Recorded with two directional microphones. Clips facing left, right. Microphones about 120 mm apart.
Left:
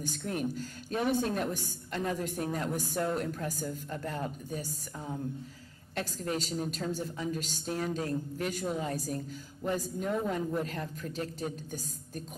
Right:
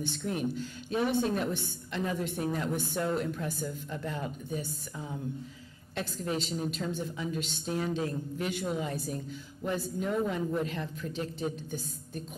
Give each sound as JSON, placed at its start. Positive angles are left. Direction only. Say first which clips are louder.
{"t": 0.0, "sound": "a woman's voice", "louder": "right 1 dB", "side_deg": 45}